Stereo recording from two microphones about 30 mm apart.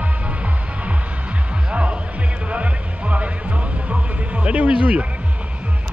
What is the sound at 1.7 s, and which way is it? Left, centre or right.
Music, right.